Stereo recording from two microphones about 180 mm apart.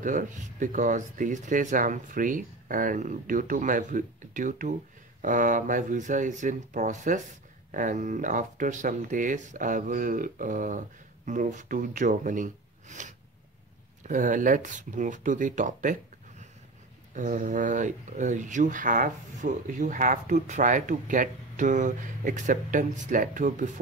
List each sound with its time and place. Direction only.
0.0 s speech: 45° right (ahead or behind)